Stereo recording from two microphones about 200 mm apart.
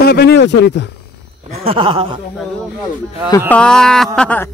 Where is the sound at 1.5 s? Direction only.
30° right (ahead or behind).